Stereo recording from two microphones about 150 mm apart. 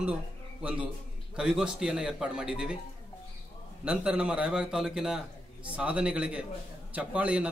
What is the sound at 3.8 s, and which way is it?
A man's voice, 5° right (ahead or behind).